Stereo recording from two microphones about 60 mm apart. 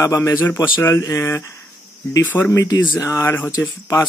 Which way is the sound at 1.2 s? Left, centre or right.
Left.